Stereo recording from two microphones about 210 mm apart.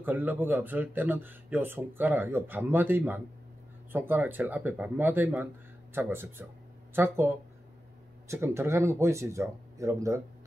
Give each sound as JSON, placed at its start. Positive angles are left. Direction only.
{"t": 0.0, "sound": "speech", "side_deg": -10}